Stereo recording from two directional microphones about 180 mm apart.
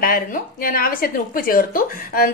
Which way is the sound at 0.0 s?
55° left (ahead or behind).